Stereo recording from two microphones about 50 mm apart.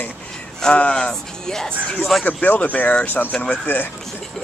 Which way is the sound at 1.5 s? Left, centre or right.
Centre.